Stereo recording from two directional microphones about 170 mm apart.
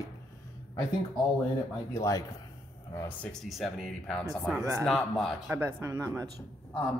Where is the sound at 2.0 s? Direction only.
20° left (ahead or behind).